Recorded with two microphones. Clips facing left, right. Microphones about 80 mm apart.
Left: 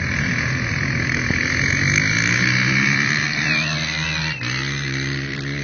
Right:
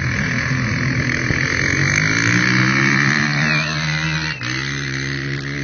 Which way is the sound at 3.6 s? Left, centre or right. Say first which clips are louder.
Right 3 dB; right.